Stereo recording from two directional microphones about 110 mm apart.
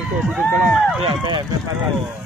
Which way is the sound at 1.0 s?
45° right (ahead or behind).